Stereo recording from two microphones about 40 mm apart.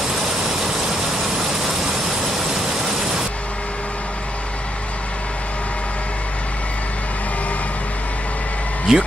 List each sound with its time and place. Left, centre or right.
8.9 s speech: centre